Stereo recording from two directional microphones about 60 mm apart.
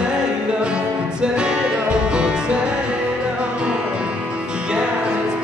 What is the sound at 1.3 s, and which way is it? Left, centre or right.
Music, centre.